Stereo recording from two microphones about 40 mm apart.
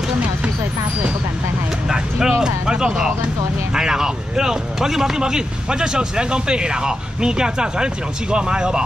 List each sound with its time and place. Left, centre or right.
1.9 s vehicle: centre
2.4 s speech: centre